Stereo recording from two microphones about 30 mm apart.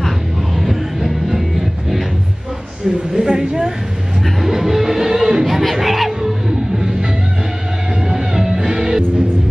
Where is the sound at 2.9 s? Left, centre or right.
Centre.